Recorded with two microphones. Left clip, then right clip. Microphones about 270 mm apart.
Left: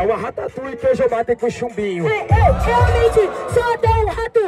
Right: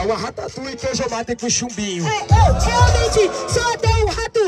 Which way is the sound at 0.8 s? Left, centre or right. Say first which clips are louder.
Left 7 dB; centre.